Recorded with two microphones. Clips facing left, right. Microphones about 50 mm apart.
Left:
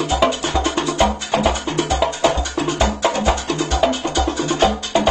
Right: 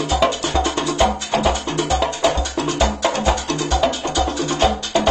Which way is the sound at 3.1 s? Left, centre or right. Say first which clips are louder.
Even; centre.